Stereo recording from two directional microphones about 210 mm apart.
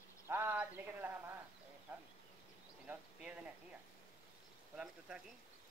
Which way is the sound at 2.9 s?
5° right (ahead or behind).